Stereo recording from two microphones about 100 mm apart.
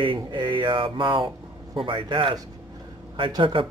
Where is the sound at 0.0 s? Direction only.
55° right (ahead or behind).